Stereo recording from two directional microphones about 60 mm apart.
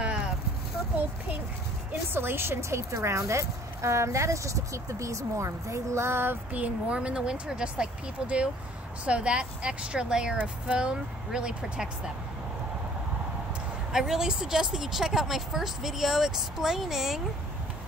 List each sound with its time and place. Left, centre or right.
0.0 s a sound: centre
2.1 s speech: right
2.9 s speech: right
6.5 s speech: right
13.9 s speech: centre